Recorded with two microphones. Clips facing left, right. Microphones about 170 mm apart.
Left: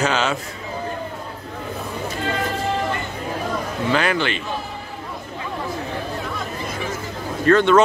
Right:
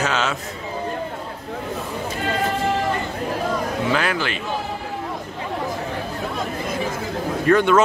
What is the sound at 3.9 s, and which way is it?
Speech, centre (ahead or behind).